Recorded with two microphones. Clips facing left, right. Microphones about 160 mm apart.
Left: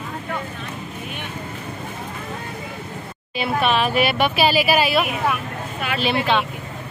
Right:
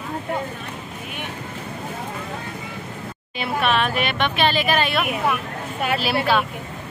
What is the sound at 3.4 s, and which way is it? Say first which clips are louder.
Speech: left 1 dB; centre (ahead or behind).